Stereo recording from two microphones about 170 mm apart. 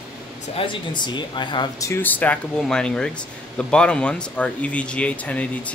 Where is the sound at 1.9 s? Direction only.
10° left (ahead or behind).